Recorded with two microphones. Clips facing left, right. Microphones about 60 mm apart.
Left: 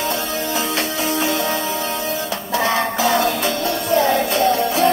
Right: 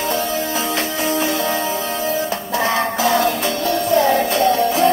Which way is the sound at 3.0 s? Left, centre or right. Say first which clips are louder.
Right 1 dB; left.